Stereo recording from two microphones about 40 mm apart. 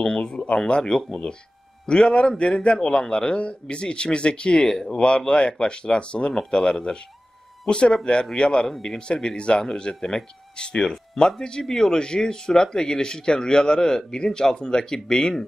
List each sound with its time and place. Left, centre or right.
0.0 s speech: centre